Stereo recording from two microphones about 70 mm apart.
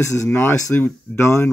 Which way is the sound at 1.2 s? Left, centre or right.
Left.